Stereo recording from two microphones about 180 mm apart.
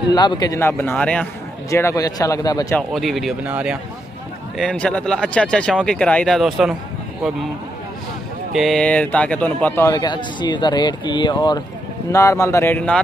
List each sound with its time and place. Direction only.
0.1 s a man's voice: 25° left (ahead or behind)
2.7 s speech: centre (ahead or behind)
4.6 s speech: 5° left (ahead or behind)
8.5 s a man's voice: centre (ahead or behind)